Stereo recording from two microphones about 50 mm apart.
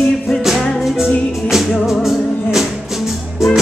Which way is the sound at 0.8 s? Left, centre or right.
Centre.